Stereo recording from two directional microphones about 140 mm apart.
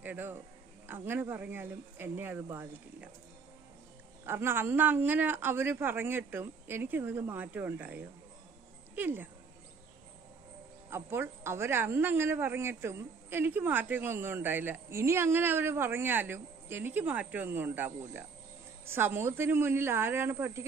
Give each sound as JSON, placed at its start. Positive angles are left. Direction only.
{"t": 0.0, "sound": "a man's voice", "side_deg": -15}
{"t": 4.3, "sound": "a woman's voice", "side_deg": -15}
{"t": 10.9, "sound": "a woman's voice", "side_deg": -15}